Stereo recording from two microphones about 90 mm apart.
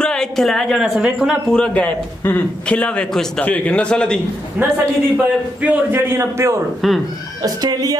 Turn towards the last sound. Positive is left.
turn(degrees=-45)  # may be behind; listen again after turning